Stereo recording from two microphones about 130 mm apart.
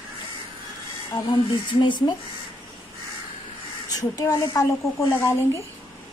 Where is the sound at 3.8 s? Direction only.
25° left (ahead or behind).